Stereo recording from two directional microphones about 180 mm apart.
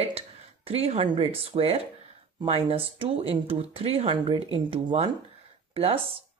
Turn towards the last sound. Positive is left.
turn(degrees=-35)  # may be behind; listen again after turning